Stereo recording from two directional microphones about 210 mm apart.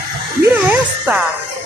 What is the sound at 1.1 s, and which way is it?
Speech, 5° right (ahead or behind).